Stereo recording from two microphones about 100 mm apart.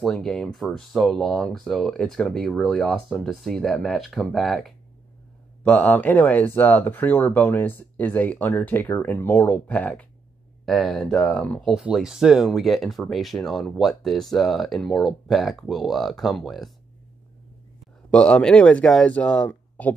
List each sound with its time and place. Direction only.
0.0 s speech: 5° left (ahead or behind)
5.6 s speech: 15° left (ahead or behind)
10.6 s speech: centre (ahead or behind)
11.6 s speech: 5° right (ahead or behind)
18.1 s speech: 10° left (ahead or behind)